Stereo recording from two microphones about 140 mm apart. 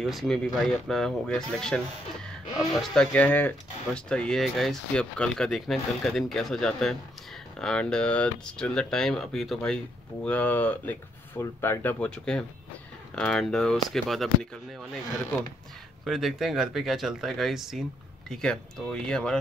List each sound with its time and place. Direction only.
0.0 s speech: centre (ahead or behind)